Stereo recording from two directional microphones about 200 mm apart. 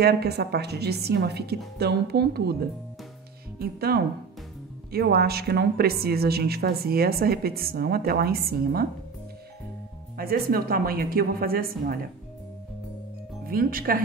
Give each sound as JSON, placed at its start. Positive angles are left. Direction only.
{"t": 0.0, "sound": "a woman's voice", "side_deg": -50}
{"t": 10.1, "sound": "a woman's voice", "side_deg": -45}
{"t": 13.5, "sound": "a woman's voice", "side_deg": -45}